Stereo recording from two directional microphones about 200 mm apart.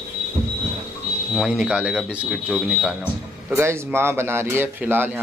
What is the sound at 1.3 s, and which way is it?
Speech, centre (ahead or behind).